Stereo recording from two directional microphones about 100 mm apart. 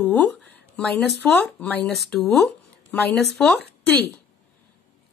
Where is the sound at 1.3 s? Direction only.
15° left (ahead or behind).